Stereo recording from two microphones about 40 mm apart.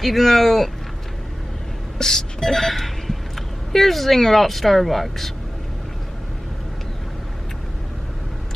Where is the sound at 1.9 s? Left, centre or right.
Centre.